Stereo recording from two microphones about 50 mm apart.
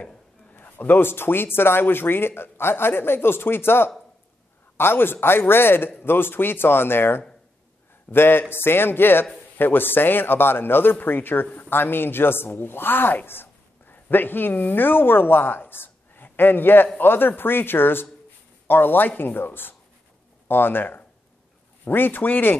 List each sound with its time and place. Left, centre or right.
0.5 s a man's voice: left